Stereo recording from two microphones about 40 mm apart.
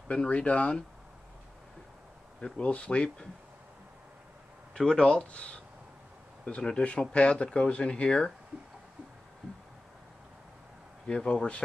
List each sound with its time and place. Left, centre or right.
0.3 s speech: left
2.6 s speech: left
4.7 s speech: left
11.1 s speech: left